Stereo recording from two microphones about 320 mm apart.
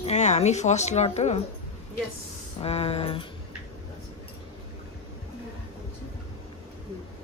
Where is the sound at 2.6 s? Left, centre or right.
Centre.